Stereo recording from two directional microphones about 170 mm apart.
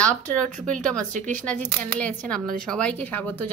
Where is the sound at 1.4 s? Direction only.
10° left (ahead or behind).